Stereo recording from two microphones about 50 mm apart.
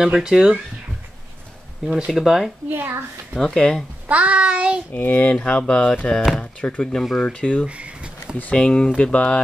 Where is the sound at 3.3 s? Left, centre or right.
Centre.